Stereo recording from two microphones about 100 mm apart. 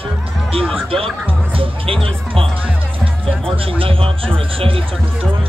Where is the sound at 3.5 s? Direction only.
65° right (ahead or behind).